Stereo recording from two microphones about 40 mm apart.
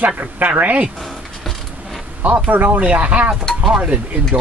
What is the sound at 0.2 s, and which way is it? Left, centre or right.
Speech, right.